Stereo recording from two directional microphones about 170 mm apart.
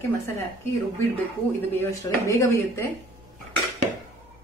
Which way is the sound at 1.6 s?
15° left (ahead or behind).